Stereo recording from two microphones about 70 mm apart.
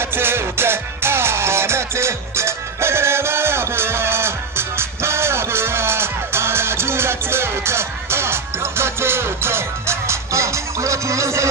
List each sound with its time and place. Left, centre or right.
0.0 s music: right